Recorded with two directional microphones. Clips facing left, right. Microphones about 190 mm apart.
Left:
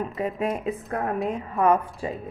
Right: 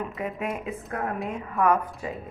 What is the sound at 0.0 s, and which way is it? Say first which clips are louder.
A woman's voice: left 4 dB; 35° left (ahead or behind).